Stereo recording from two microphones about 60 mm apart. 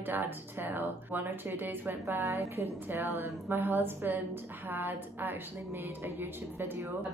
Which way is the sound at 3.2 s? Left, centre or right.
Right.